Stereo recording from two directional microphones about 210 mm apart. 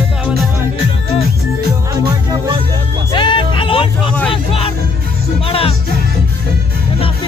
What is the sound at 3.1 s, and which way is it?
Music, 20° left (ahead or behind).